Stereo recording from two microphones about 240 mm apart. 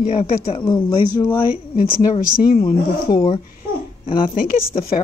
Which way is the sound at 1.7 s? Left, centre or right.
Left.